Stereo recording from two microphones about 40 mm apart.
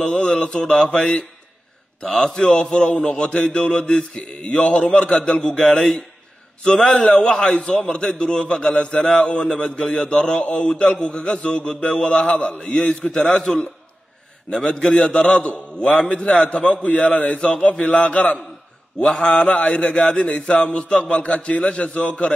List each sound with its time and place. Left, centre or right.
0.0 s a man's voice: left
2.0 s a man's voice: centre
5.6 s a man's voice: centre
8.7 s a man's voice: left
12.5 s a man's voice: centre
14.6 s a man's voice: left
19.1 s a man's voice: left